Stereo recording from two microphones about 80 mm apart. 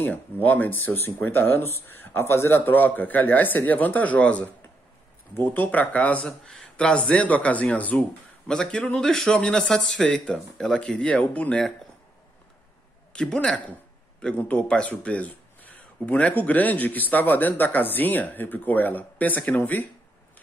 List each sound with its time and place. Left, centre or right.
0.0 s speech: left
6.2 s speech: centre
8.5 s speech: centre
13.1 s speech: centre